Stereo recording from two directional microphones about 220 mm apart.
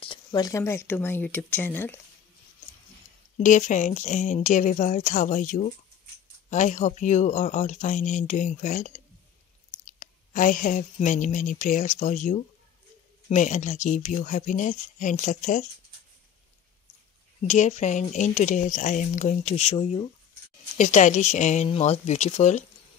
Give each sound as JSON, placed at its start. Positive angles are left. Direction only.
{"t": 0.0, "sound": "speech", "side_deg": 20}
{"t": 3.3, "sound": "speech", "side_deg": 35}
{"t": 17.4, "sound": "speech", "side_deg": 30}